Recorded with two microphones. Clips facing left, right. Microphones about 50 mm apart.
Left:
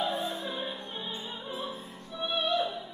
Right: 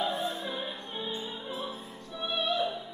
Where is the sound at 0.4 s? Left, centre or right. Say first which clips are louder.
Even; centre.